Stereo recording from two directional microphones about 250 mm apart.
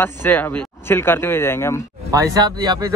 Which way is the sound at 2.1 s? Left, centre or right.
Centre.